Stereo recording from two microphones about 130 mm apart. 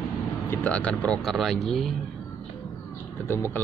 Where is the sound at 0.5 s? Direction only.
10° left (ahead or behind).